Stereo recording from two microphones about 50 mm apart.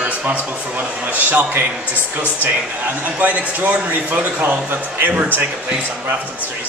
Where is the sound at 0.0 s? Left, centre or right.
Right.